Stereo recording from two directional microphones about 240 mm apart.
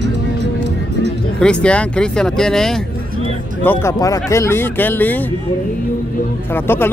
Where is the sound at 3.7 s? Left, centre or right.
Centre.